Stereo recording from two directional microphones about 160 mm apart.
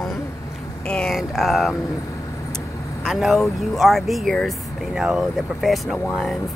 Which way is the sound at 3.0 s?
Centre (ahead or behind).